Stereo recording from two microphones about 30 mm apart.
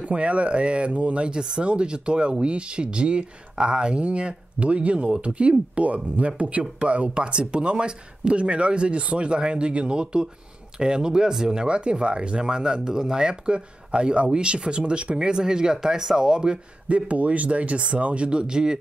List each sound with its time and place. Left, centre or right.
0.0 s speech: right
4.0 s speech: right; by 16.2 s centre
16.2 s speech: right
16.9 s speech: right